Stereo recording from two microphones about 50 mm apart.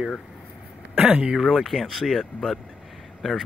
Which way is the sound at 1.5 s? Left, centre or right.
Centre.